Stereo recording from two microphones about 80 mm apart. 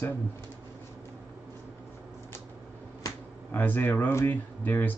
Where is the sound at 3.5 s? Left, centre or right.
Left.